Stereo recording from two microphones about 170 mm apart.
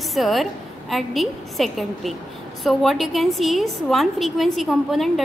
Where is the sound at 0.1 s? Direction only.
Centre (ahead or behind).